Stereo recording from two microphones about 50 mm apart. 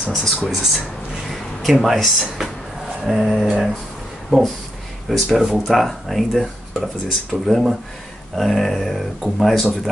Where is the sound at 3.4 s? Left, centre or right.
Centre.